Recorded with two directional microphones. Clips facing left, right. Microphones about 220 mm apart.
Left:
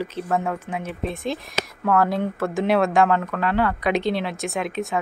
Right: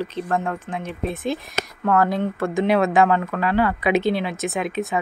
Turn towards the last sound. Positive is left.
turn(degrees=0)  # may be behind; listen again after turning